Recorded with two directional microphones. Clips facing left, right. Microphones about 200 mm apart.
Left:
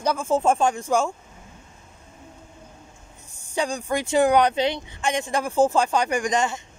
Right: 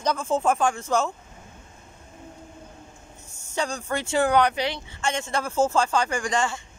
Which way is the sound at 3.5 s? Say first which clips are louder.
Left 3 dB; 15° left (ahead or behind).